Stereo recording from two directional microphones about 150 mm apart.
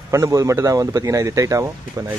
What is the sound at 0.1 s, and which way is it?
Speech, 20° right (ahead or behind).